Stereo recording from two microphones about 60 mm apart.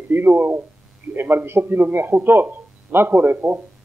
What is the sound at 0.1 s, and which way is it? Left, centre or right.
Speech, right.